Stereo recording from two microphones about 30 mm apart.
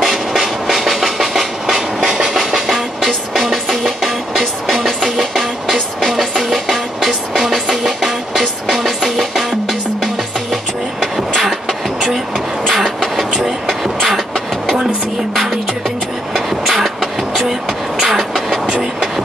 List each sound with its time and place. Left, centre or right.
0.0 s a sound: centre
1.7 s train: centre
3.4 s music: centre
10.5 s train: centre
11.4 s beatboxing: centre
12.7 s vehicle: centre
16.3 s vehicle: centre
17.5 s beatboxing: centre
18.1 s vehicle: centre